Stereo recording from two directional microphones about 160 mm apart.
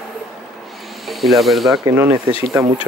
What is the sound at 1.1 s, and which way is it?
Speech, centre (ahead or behind).